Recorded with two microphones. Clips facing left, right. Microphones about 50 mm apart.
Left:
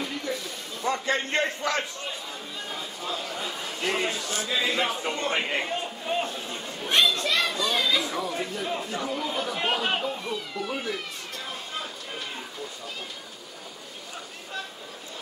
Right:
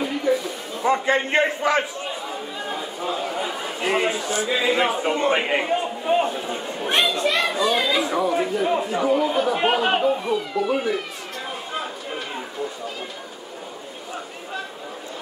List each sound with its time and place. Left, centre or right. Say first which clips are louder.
0.0 s a sound: right 9 dB; centre
6.0 s speech: right 9 dB; centre
11.7 s chatter: right 6 dB; right